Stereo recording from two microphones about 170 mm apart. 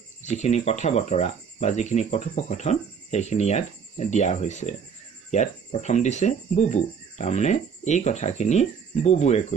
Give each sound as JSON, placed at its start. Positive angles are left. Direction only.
{"t": 0.2, "sound": "speech", "side_deg": 45}